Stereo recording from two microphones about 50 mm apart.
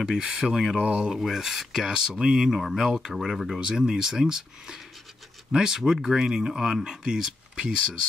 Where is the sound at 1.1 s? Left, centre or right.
Centre.